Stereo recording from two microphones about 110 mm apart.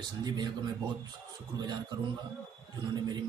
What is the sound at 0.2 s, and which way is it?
Speech, 40° right (ahead or behind).